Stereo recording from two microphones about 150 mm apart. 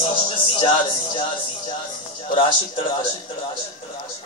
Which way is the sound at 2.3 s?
35° left (ahead or behind).